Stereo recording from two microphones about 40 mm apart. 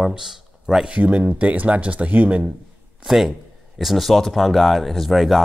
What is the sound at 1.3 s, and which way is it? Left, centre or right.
Speech, right.